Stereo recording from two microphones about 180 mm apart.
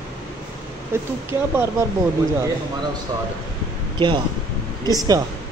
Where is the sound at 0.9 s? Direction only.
15° right (ahead or behind).